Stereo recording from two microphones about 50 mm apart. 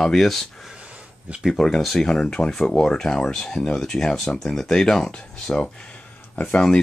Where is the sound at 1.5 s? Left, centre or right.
Centre.